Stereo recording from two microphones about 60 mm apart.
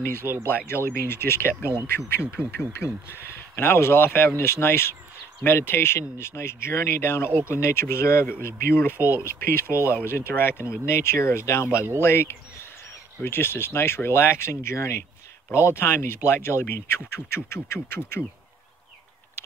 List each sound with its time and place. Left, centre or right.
0.5 s speech: left
1.5 s speech: right
1.9 s speech: left
9.0 s speech: left
9.9 s speech: left